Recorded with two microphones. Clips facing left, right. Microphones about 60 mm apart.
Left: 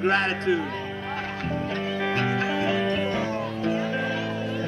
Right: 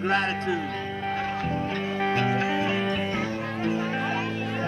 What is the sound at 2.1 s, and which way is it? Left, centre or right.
Music, left.